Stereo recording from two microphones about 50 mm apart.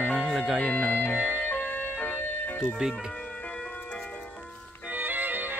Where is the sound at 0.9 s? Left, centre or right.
Left.